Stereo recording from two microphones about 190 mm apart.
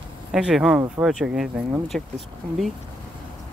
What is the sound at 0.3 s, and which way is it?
Speech, 5° right (ahead or behind).